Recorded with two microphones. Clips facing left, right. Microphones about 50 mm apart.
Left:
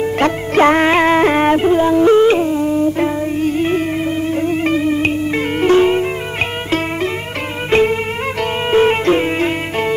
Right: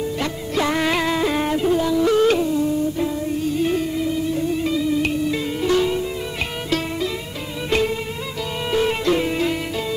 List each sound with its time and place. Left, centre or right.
0.0 s music: left
7.7 s music: left